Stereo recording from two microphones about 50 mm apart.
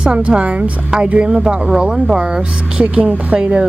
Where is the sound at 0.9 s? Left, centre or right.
Centre.